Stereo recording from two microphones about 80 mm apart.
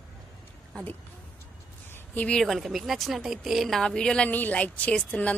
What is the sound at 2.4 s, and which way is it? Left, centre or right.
Speech, centre.